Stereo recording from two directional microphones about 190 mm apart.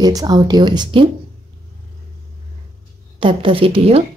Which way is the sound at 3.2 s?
25° right (ahead or behind).